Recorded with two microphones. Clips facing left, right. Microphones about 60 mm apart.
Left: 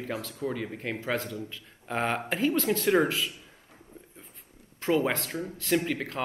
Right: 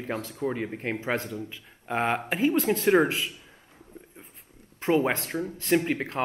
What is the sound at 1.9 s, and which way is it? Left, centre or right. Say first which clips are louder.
Speech: right 2 dB; centre.